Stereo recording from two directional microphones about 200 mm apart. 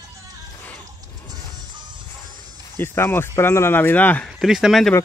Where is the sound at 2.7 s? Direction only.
10° left (ahead or behind).